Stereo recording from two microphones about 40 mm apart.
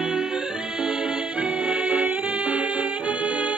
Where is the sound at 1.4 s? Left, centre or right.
Right.